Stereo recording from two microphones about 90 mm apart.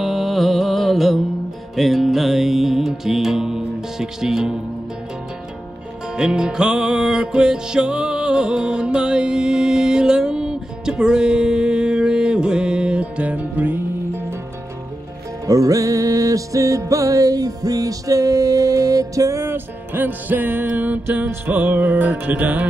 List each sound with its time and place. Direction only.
0.0 s music: centre (ahead or behind)
6.1 s music: 10° right (ahead or behind)
15.4 s music: 40° right (ahead or behind); by 22.7 s 20° right (ahead or behind)